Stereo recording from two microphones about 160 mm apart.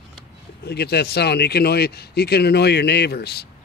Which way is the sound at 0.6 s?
90° left.